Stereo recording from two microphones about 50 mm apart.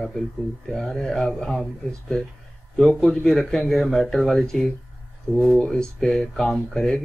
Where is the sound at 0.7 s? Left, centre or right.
Centre.